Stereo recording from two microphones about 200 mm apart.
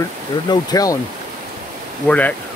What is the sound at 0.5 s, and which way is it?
Speech, 20° left (ahead or behind).